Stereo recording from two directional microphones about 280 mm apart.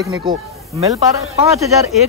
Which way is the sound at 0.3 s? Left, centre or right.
Right.